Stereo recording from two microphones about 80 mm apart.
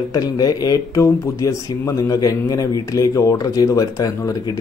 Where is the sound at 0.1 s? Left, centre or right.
Left.